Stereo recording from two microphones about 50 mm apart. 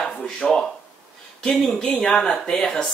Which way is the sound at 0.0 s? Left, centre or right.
Centre.